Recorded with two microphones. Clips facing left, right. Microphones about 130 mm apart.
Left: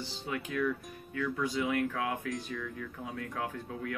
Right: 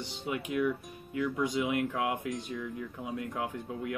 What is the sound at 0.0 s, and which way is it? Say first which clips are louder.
Speech: right 2 dB; 15° right (ahead or behind).